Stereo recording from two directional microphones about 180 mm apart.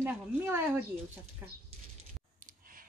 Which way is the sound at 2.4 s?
50° right (ahead or behind).